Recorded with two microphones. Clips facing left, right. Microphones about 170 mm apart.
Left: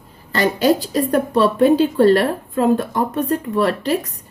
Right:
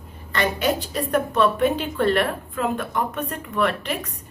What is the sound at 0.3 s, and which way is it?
A woman's voice, 35° left (ahead or behind).